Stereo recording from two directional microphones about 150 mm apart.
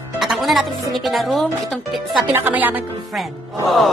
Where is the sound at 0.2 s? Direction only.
Centre (ahead or behind).